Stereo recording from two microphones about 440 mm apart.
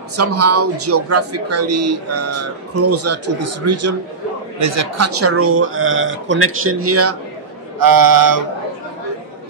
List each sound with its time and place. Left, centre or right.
0.1 s a man's voice: right
7.8 s mantra: right